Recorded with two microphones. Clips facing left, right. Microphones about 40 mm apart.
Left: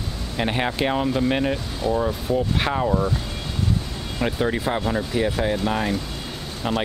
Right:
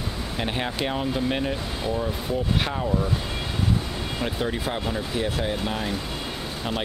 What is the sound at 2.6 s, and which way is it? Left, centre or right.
Speech, left.